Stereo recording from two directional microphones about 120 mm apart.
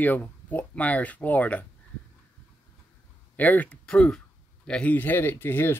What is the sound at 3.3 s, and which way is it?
Speech, 15° left (ahead or behind).